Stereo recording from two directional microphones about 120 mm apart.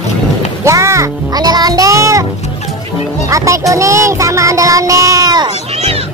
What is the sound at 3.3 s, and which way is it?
Child singing, 25° right (ahead or behind).